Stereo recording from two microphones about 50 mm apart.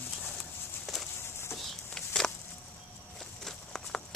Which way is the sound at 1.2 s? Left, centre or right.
Left.